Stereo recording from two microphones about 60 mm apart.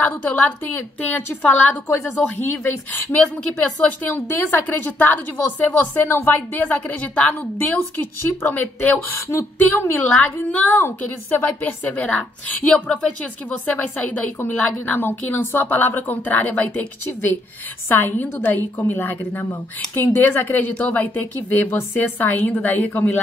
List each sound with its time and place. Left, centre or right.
0.0 s a woman's voice: left
2.4 s a woman's voice: left
8.2 s speech: left
8.5 s a woman's voice: left
9.1 s speech: left
9.9 s a woman's voice: left
11.0 s a woman's voice: left